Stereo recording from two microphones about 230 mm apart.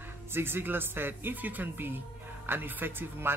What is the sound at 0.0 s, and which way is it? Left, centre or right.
Speech, centre.